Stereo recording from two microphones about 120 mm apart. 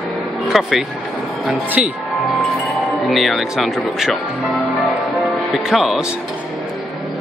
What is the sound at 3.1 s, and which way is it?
Speech, centre (ahead or behind).